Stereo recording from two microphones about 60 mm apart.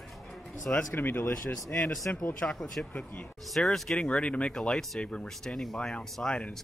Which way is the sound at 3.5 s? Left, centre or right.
Centre.